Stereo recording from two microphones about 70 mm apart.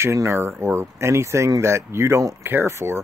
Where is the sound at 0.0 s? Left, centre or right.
Right.